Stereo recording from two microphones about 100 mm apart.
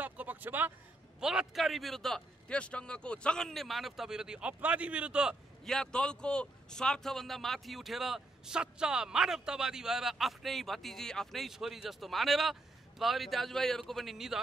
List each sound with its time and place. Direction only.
0.0 s a sound: 15° right (ahead or behind)
1.2 s a man's voice: 5° right (ahead or behind)
5.7 s a man's voice: 10° left (ahead or behind)